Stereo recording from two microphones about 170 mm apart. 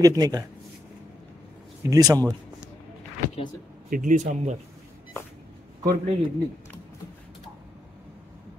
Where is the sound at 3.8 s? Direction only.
50° right (ahead or behind).